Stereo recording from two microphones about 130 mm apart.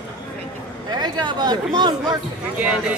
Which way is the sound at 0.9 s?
35° right (ahead or behind).